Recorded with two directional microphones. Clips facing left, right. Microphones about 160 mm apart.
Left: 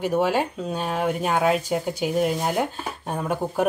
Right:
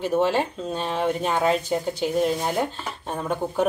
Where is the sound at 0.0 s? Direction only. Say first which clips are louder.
Even; 10° left (ahead or behind).